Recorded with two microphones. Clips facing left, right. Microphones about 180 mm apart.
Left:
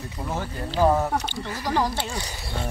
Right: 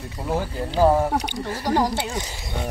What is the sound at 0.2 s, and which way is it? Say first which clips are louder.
Speech: right 5 dB; 15° right (ahead or behind).